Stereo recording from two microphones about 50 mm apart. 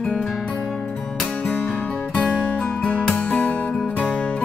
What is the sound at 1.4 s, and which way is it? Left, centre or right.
Music, left.